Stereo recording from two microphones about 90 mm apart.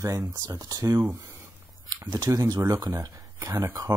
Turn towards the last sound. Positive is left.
turn(degrees=-40)  # may be behind; listen again after turning